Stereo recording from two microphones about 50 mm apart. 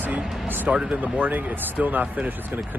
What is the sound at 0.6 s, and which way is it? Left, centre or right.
Speech, right.